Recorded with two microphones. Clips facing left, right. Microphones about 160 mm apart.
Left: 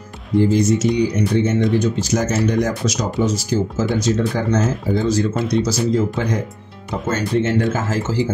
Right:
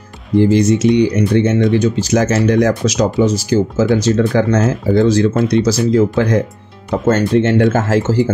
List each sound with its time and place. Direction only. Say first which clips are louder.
0.4 s speech: right 4 dB; 80° right
7.1 s speech: right 6 dB; 65° right (ahead or behind)